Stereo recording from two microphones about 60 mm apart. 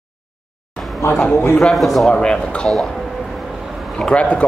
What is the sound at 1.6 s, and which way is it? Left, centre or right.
A man's voice, centre.